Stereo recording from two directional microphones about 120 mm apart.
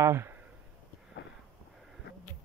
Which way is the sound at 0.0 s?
20° right (ahead or behind).